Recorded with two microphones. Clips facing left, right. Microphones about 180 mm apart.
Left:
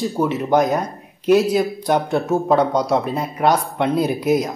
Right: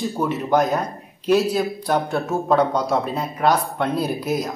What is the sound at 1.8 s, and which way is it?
Speech, 15° left (ahead or behind).